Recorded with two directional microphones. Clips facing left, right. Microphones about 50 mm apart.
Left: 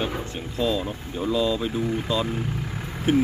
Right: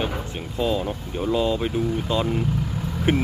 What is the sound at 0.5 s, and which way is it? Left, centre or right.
Speech, right.